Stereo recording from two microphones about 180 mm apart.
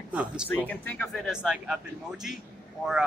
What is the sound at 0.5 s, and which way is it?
Speech, 10° left (ahead or behind).